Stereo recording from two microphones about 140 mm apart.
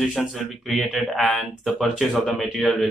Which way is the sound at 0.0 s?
Centre (ahead or behind).